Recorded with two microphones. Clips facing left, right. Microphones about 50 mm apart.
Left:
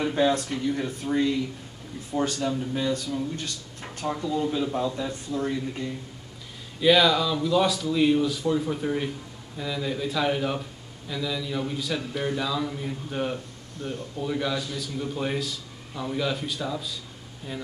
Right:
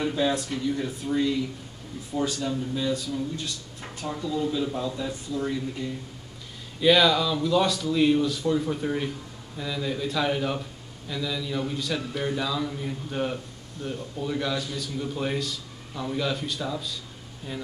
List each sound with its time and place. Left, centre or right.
0.1 s speech: left
4.0 s speech: left
6.8 s speech: centre